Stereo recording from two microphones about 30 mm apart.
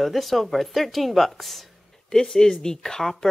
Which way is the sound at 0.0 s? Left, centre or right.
Centre.